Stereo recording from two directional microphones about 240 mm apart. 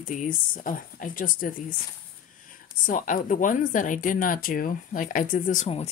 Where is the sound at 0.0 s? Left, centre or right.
Left.